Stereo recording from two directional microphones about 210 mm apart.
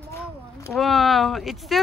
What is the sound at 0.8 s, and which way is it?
Speech, centre (ahead or behind).